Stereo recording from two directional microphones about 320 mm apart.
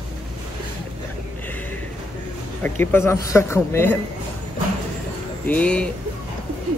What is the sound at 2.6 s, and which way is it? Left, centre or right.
Speech, centre.